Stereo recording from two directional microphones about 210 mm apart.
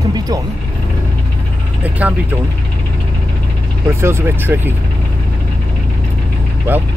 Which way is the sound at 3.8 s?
10° right (ahead or behind).